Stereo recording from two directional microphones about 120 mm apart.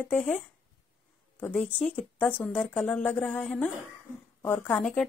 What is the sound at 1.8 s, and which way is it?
Speech, 10° left (ahead or behind).